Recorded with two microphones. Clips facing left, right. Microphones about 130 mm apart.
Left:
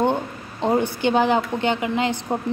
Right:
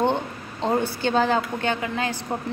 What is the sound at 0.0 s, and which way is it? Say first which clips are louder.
A woman's voice: left 2 dB; 10° left (ahead or behind).